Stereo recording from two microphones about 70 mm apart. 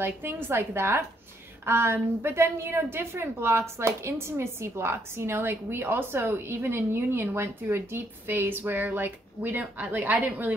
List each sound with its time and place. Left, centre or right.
0.0 s a woman's voice: right